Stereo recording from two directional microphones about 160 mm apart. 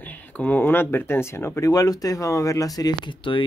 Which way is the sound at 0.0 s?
10° left (ahead or behind).